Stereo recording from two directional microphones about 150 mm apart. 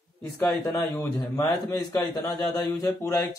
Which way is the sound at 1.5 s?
25° left (ahead or behind).